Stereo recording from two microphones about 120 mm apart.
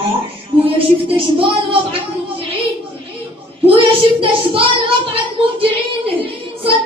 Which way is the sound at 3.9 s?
50° right (ahead or behind).